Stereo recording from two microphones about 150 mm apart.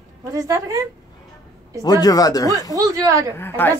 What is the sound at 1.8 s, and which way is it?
Speech, 25° left (ahead or behind).